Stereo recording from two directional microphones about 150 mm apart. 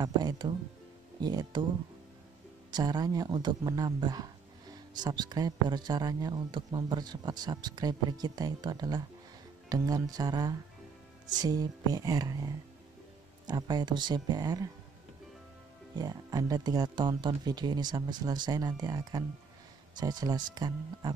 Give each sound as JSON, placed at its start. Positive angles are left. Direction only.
{"t": 0.0, "sound": "speech", "side_deg": -25}
{"t": 2.7, "sound": "speech", "side_deg": -25}
{"t": 16.0, "sound": "speech", "side_deg": -25}